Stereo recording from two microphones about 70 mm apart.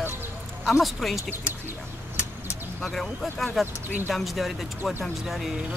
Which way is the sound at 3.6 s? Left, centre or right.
Right.